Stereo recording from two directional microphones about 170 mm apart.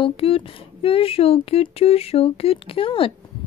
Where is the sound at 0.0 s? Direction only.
30° left (ahead or behind).